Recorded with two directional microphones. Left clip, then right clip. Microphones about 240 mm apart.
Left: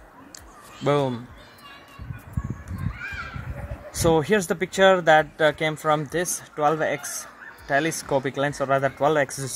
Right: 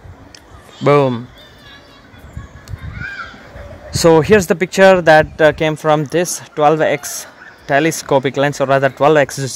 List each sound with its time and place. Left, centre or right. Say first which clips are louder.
0.8 s speech: right 11 dB; right
3.9 s speech: right 11 dB; right